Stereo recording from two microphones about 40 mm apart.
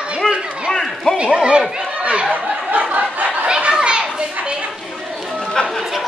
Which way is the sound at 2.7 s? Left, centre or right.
Right.